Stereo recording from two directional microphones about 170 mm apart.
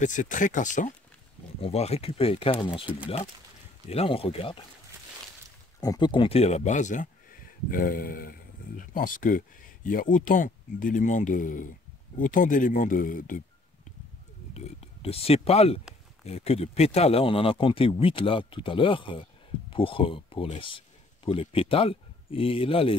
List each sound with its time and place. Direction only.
0.0 s speech: 50° left (ahead or behind)
1.6 s speech: 35° left (ahead or behind)
5.8 s speech: 25° left (ahead or behind); by 13.4 s 50° left (ahead or behind)
14.5 s speech: 35° left (ahead or behind)